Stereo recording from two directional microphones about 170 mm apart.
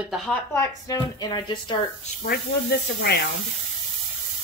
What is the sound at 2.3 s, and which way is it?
Speech, 70° left (ahead or behind).